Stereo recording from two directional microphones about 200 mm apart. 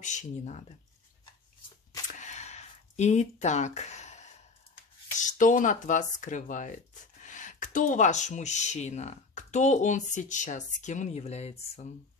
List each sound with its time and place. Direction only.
0.0 s speech: 35° left (ahead or behind)
2.0 s a sound: 35° left (ahead or behind)
5.1 s speech: 40° left (ahead or behind)